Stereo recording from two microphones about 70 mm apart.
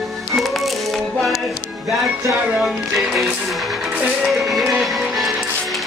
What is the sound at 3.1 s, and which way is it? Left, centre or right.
Music, centre.